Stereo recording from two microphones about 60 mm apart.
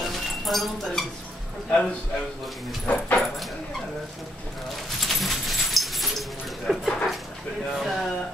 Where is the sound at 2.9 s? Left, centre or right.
Centre.